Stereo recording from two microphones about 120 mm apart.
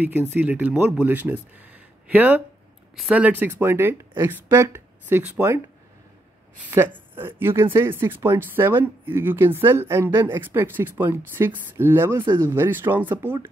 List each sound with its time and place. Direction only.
0.3 s speech: 15° right (ahead or behind)
6.7 s speech: 20° right (ahead or behind)